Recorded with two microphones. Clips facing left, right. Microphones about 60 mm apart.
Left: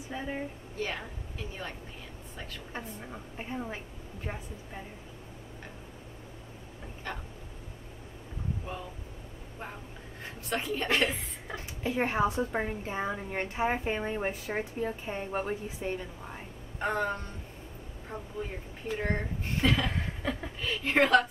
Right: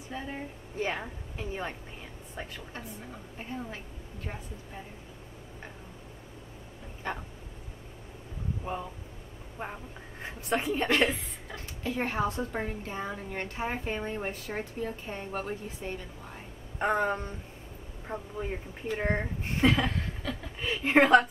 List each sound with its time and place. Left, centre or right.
0.1 s a woman's voice: centre
0.7 s speech: right
3.3 s a woman's voice: centre
7.0 s speech: right
9.6 s a woman's voice: right
11.4 s a woman's voice: centre
16.7 s speech: centre
20.2 s speech: centre
20.6 s speech: centre